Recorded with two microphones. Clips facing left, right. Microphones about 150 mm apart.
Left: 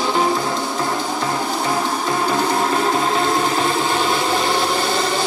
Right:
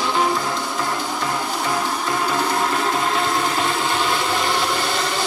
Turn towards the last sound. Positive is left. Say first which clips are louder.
# left 3 dB
turn(degrees=25)  # may be behind; listen again after turning